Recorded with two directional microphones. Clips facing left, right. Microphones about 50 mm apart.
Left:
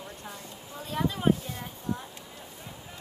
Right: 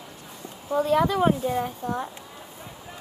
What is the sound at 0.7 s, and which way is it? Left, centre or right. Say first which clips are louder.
A woman's voice: right 11 dB; right.